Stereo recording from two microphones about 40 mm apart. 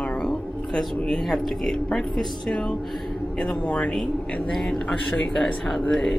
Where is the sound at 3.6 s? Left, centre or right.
Left.